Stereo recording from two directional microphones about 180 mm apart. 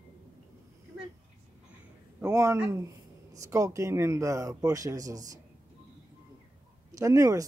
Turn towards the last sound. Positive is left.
turn(degrees=-20)  # may be behind; listen again after turning